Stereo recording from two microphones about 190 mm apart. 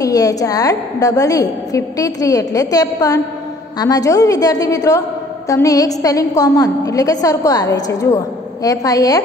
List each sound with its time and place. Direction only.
0.0 s a woman's voice: 20° left (ahead or behind)